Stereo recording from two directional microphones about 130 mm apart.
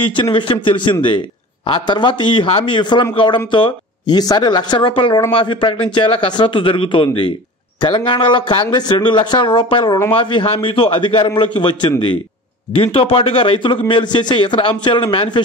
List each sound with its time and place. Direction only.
0.0 s a man's voice: 40° left (ahead or behind)